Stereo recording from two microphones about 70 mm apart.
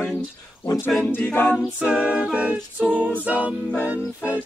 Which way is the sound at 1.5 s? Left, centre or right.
Centre.